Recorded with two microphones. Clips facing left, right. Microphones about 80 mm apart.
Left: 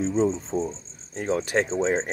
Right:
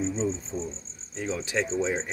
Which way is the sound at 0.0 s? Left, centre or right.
Left.